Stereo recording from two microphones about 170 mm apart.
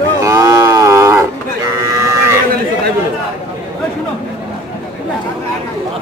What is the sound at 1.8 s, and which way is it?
Livestock, 15° right (ahead or behind).